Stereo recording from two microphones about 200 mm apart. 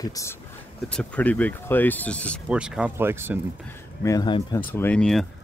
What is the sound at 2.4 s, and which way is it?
Speech, 5° right (ahead or behind).